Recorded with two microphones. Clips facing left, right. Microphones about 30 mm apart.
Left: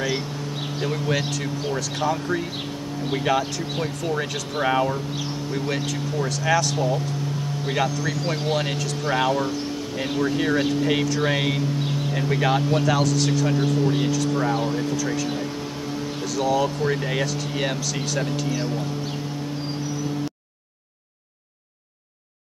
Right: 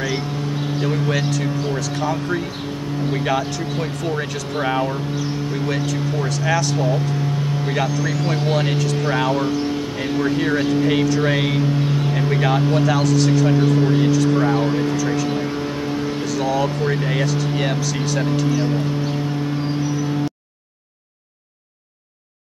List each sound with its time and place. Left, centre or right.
0.7 s speech: centre
3.8 s speech: centre
9.3 s a sound: centre
10.3 s speech: centre
16.3 s speech: centre